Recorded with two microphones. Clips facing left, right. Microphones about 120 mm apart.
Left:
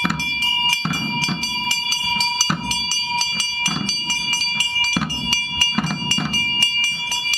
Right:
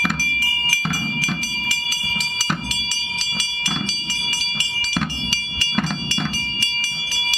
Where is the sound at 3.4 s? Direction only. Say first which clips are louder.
Left 1 dB; 35° left (ahead or behind).